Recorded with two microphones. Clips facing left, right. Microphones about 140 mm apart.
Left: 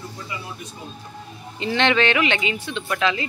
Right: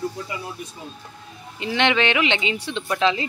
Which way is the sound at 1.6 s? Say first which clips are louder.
Left 1 dB; 15° right (ahead or behind).